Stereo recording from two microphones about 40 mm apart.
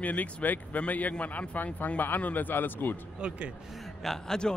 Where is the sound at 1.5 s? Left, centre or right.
Left.